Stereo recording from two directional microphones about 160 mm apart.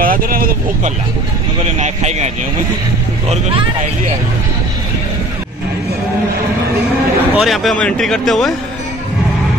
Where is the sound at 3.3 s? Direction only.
40° right (ahead or behind).